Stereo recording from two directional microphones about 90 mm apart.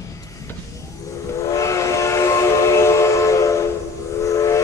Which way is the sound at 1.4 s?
35° left (ahead or behind).